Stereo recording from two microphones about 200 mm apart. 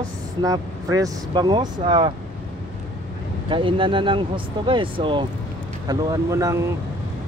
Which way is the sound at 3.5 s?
25° right (ahead or behind).